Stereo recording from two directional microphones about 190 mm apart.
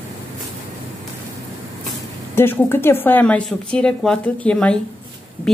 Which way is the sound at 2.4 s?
10° left (ahead or behind).